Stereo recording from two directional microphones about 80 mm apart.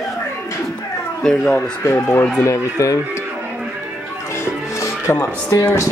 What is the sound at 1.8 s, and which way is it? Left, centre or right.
Speech, left.